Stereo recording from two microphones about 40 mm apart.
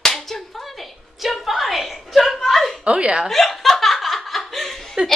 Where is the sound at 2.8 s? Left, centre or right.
Right.